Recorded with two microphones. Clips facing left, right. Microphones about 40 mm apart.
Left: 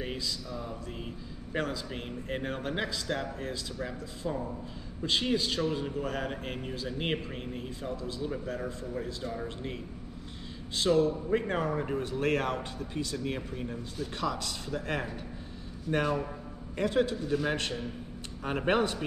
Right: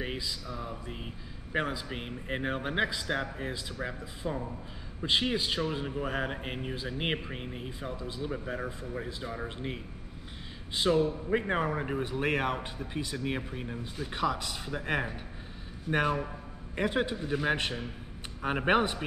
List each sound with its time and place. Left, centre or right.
0.0 s a man's voice: centre